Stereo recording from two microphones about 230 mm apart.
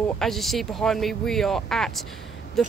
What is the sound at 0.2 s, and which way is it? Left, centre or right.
Speech, centre.